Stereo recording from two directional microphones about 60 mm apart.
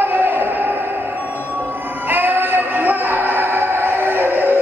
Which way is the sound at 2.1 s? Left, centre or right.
Right.